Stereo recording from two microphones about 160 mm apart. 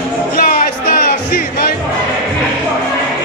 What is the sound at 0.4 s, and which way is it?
Music, 60° left (ahead or behind).